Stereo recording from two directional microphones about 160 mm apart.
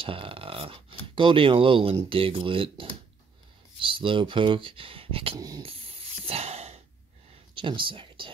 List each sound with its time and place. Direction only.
0.0 s speech: 35° right (ahead or behind)
5.6 s a sound: 35° right (ahead or behind)
7.5 s speech: 30° right (ahead or behind)